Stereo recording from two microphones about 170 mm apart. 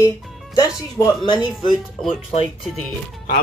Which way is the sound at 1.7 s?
Centre (ahead or behind).